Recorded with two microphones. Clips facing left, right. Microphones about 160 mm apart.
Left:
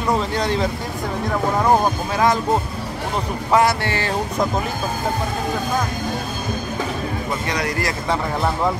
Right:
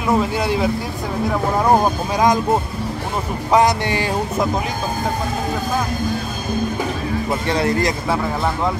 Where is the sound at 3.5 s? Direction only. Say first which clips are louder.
Right 2 dB; 15° right (ahead or behind).